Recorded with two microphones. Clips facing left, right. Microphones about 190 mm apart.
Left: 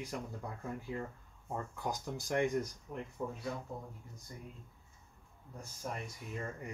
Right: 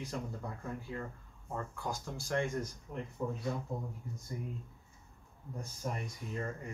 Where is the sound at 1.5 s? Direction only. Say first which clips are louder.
Even; 20° left (ahead or behind).